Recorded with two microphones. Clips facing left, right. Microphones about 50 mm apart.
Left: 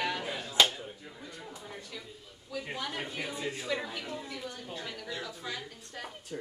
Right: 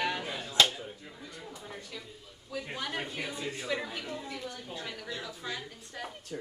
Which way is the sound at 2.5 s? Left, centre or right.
Centre.